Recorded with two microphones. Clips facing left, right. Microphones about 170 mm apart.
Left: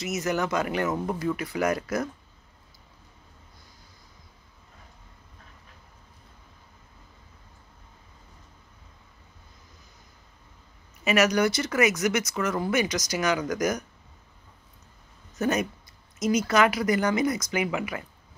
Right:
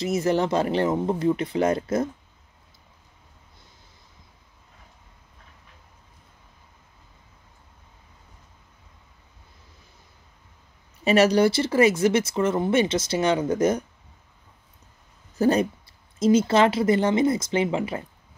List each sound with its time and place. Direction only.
0.0 s speech: 30° right (ahead or behind)
11.1 s speech: 30° right (ahead or behind)
15.3 s speech: 30° right (ahead or behind)